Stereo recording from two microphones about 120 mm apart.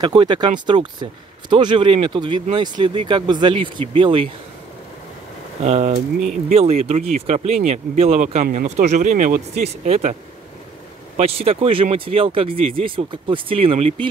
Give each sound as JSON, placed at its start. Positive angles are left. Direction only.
{"t": 0.0, "sound": "speech", "side_deg": -40}
{"t": 5.6, "sound": "speech", "side_deg": -65}
{"t": 11.1, "sound": "speech", "side_deg": -55}